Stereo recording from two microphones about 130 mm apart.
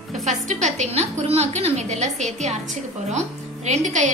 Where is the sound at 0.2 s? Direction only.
65° right (ahead or behind).